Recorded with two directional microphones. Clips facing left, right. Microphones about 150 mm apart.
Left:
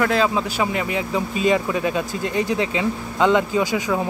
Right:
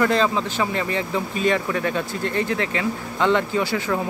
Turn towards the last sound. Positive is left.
turn(degrees=15)  # may be behind; listen again after turning